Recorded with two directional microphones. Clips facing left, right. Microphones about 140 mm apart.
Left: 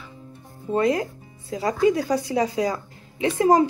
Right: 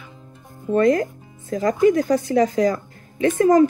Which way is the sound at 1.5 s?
50° right (ahead or behind).